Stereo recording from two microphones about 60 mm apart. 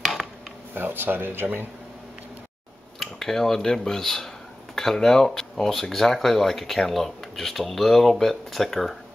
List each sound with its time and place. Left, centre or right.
0.0 s mechanisms: centre
0.7 s speech: right
3.0 s speech: centre